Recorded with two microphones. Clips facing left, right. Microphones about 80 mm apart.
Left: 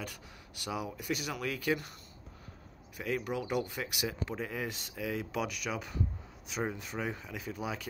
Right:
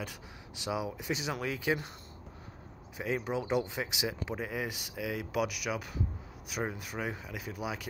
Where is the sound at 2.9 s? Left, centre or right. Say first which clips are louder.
Right 1 dB; centre.